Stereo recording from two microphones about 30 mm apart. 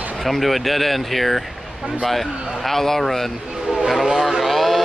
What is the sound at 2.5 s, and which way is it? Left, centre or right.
A man's voice, centre.